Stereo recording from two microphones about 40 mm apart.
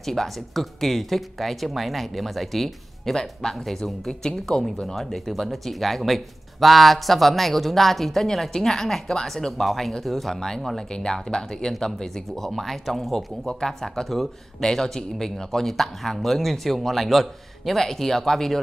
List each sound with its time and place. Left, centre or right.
0.0 s speech: centre
4.5 s speech: centre
4.8 s speech: centre
12.4 s speech: centre